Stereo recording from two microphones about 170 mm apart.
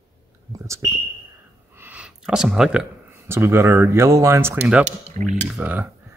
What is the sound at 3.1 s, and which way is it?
Speech, 15° right (ahead or behind).